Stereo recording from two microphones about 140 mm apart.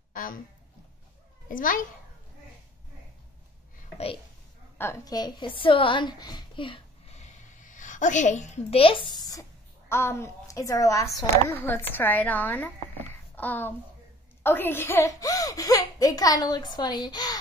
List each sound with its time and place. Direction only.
0.1 s a sound: 85° left
1.5 s a child's voice: 75° left (ahead or behind)
4.7 s a woman's voice: 20° left (ahead or behind); by 6.8 s 35° left (ahead or behind)
7.1 s a woman's voice: 55° left (ahead or behind); by 17.4 s 30° left (ahead or behind)